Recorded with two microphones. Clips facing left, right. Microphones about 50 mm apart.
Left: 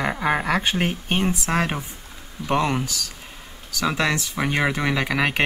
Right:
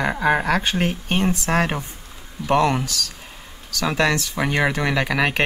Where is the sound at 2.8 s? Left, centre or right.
Centre.